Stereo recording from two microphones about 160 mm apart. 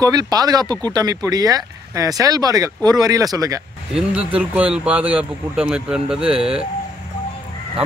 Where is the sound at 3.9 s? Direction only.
5° right (ahead or behind).